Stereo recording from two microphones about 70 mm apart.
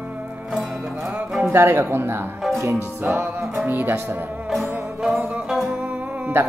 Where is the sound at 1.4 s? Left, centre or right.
Right.